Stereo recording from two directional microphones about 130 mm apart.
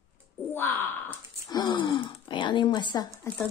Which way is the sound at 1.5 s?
35° left (ahead or behind).